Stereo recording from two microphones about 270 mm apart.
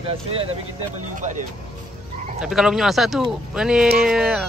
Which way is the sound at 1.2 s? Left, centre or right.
Right.